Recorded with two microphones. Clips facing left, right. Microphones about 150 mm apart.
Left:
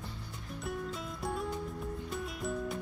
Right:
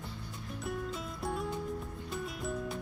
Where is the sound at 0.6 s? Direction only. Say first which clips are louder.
Even; centre (ahead or behind).